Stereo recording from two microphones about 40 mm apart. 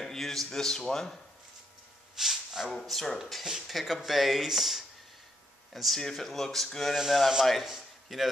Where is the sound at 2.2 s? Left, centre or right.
Centre.